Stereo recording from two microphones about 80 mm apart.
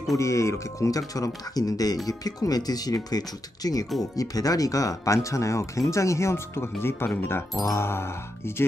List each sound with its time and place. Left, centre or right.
0.2 s speech: left